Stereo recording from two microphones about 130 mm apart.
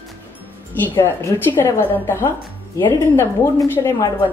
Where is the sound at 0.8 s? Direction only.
15° left (ahead or behind).